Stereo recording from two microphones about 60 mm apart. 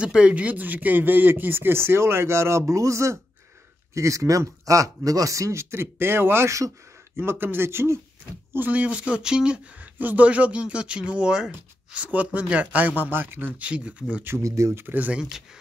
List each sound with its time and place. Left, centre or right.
0.0 s speech: centre; by 8.0 s right
8.5 s speech: right
9.9 s speech: right
13.7 s speech: right
14.4 s speech: right
14.8 s speech: right